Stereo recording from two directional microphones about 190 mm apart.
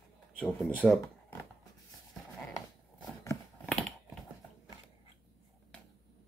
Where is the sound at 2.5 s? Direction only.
20° left (ahead or behind).